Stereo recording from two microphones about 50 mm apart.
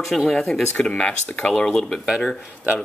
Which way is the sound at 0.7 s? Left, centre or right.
Centre.